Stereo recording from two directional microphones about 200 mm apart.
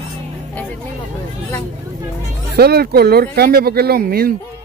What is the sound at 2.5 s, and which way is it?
Speech, 50° right (ahead or behind).